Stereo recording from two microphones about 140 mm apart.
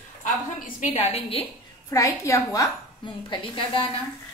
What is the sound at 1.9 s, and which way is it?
A woman's voice, 20° left (ahead or behind).